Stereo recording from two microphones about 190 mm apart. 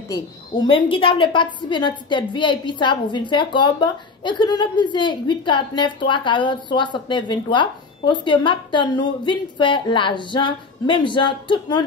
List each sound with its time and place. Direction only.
0.1 s a woman's voice: 25° left (ahead or behind)